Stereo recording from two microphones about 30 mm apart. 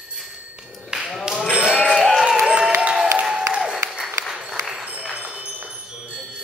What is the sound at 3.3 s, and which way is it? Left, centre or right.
Applause, right.